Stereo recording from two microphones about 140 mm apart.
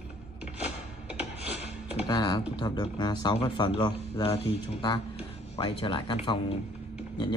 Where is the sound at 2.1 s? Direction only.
30° left (ahead or behind).